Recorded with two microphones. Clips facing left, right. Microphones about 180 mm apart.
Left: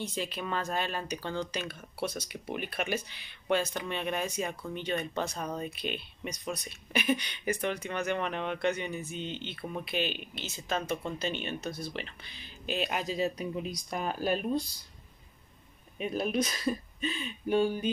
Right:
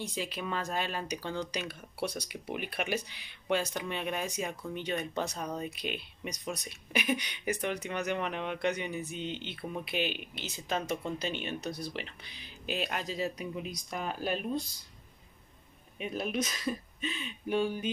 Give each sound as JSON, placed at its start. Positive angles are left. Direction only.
{"t": 0.0, "sound": "speech", "side_deg": -10}
{"t": 12.9, "sound": "a man's voice", "side_deg": 15}
{"t": 13.4, "sound": "speech", "side_deg": 35}
{"t": 16.0, "sound": "speech", "side_deg": 35}